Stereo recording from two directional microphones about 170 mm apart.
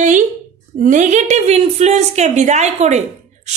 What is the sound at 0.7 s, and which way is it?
A woman's voice, 45° right (ahead or behind).